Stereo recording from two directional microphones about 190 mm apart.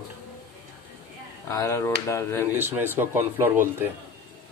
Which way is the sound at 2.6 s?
10° right (ahead or behind).